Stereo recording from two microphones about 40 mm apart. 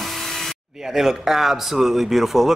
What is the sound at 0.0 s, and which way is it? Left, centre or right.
Spray, centre.